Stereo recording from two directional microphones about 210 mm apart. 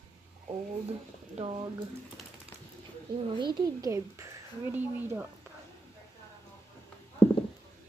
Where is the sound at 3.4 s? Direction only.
15° right (ahead or behind).